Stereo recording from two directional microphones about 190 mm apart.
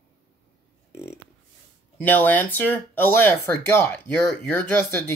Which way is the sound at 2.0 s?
10° left (ahead or behind).